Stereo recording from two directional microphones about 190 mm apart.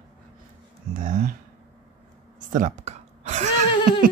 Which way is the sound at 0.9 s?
45° right (ahead or behind).